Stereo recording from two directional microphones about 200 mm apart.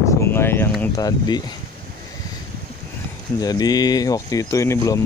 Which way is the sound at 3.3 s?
20° left (ahead or behind).